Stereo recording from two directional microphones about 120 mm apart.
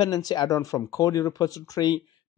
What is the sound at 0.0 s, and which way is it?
Speech, 35° left (ahead or behind).